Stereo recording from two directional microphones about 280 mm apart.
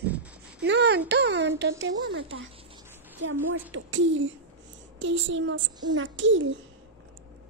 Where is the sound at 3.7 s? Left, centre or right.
Right.